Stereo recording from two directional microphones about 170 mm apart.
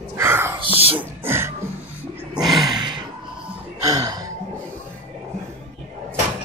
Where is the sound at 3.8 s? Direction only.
20° right (ahead or behind).